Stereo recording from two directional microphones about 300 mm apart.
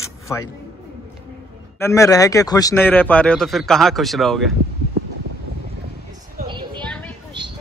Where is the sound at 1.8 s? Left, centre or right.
Centre.